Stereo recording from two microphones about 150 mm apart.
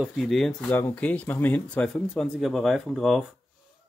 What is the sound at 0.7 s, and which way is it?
Speech, 15° left (ahead or behind).